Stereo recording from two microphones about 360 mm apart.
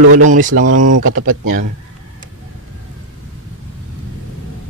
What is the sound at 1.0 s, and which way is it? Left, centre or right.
Speech, right.